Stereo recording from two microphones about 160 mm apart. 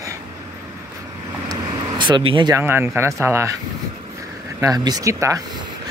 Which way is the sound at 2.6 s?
15° right (ahead or behind).